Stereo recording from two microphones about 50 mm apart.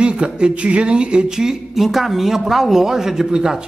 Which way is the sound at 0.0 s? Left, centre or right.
Centre.